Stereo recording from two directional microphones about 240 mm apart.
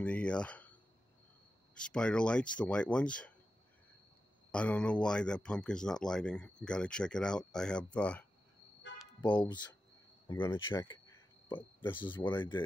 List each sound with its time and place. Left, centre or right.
0.0 s speech: centre
1.8 s speech: centre
4.5 s speech: centre
9.3 s speech: centre